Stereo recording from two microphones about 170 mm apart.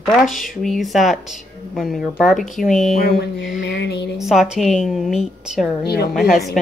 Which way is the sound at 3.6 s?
90° left.